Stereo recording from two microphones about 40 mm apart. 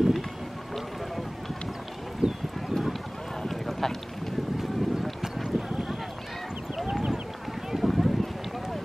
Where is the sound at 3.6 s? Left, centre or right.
Centre.